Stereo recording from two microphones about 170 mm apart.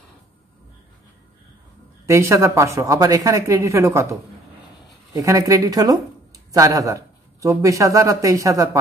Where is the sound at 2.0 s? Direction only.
15° right (ahead or behind).